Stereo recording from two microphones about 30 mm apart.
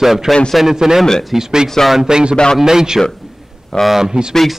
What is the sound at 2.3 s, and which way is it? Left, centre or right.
Speech, left.